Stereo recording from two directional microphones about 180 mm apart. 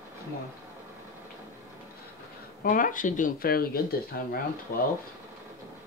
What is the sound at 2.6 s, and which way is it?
Speech, 50° left (ahead or behind).